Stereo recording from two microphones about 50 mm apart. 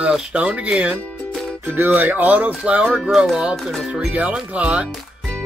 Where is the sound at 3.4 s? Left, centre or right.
Centre.